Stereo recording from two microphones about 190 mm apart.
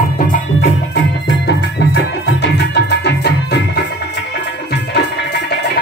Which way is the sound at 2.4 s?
65° left (ahead or behind).